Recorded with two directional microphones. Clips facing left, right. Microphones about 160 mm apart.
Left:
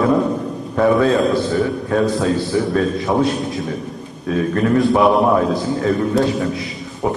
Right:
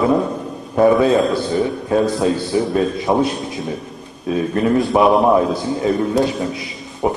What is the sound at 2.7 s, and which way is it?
Speech, 15° right (ahead or behind).